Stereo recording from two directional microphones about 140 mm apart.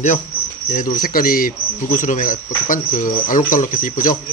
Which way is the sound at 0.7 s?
85° left.